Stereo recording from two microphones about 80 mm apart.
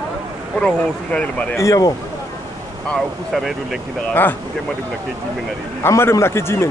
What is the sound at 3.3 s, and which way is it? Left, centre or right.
Speech, centre.